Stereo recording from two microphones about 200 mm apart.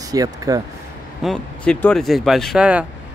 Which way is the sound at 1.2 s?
5° left (ahead or behind).